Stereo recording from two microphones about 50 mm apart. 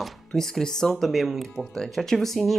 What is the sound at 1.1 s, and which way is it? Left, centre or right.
Speech, centre.